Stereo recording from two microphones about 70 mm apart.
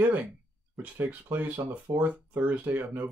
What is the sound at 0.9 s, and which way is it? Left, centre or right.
Speech, right.